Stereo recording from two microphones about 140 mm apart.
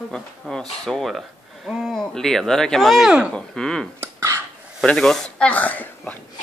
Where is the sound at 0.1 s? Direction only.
5° left (ahead or behind).